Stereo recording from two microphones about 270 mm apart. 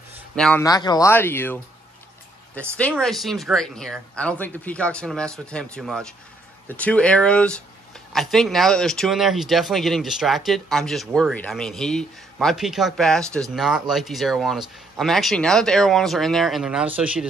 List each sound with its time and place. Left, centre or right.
0.4 s speech: centre
2.8 s speech: centre